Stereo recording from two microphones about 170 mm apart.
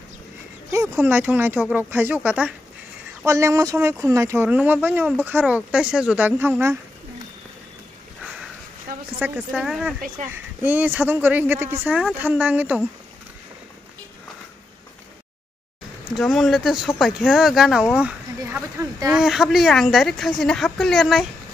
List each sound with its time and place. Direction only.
0.9 s speech: 10° right (ahead or behind)
3.3 s speech: 15° right (ahead or behind)
8.2 s sniff: 5° right (ahead or behind)
9.5 s speech: 5° right (ahead or behind)
16.2 s speech: centre (ahead or behind)
18.4 s speech: 15° right (ahead or behind)
19.1 s speech: centre (ahead or behind)